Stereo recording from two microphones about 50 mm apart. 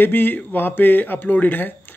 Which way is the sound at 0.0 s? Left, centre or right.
Left.